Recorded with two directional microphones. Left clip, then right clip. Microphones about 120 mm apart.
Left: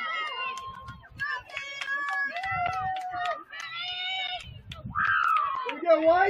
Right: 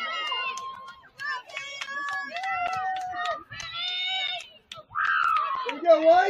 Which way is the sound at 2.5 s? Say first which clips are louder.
Right 4 dB; 5° left (ahead or behind).